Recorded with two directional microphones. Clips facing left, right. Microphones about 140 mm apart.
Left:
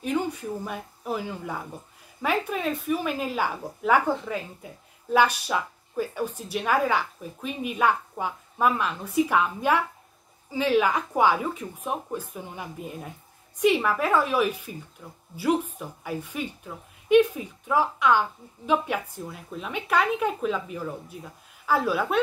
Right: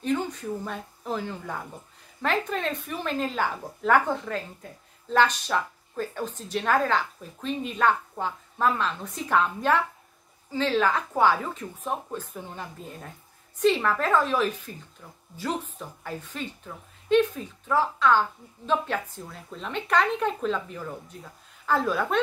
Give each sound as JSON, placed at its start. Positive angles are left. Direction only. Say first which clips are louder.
{"t": 0.0, "sound": "a woman's voice", "louder": "even", "side_deg": 10}